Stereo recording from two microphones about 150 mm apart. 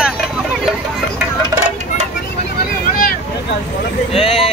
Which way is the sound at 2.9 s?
70° left (ahead or behind).